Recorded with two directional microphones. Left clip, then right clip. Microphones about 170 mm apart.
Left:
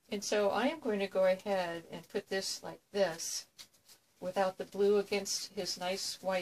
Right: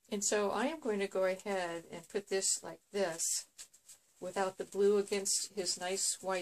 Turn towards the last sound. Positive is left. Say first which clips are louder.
# left 1 dB
turn(degrees=-30)  # may be behind; listen again after turning